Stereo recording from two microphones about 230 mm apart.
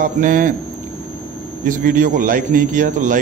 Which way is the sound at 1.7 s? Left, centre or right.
Right.